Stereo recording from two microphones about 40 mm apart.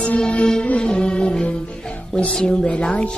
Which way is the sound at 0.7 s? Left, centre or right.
Left.